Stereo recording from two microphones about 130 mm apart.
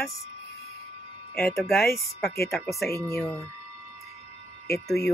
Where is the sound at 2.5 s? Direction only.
Centre (ahead or behind).